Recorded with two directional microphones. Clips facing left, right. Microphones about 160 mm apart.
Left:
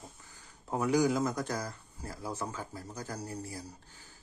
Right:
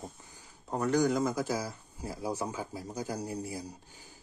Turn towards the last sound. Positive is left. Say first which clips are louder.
# right 4 dB
turn(degrees=-10)  # may be behind; listen again after turning